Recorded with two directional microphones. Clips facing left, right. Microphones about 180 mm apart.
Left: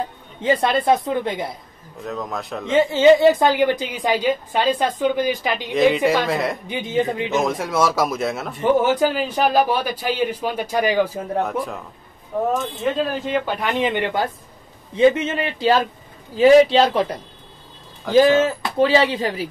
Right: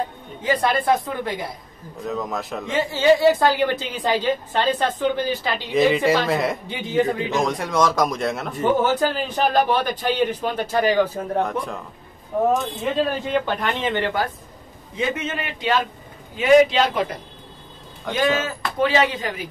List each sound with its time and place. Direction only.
0.4 s speech: 25° left (ahead or behind)
2.0 s a man's voice: centre (ahead or behind)
2.6 s a woman's voice: 20° left (ahead or behind)
5.7 s a man's voice: centre (ahead or behind)
6.7 s speech: 20° left (ahead or behind)
7.3 s a man's voice: centre (ahead or behind)
12.8 s a man's voice: centre (ahead or behind)
13.6 s a woman's voice: 15° left (ahead or behind); by 17.0 s 35° left (ahead or behind)
18.1 s a man's voice: centre (ahead or behind)
18.4 s speech: 30° left (ahead or behind)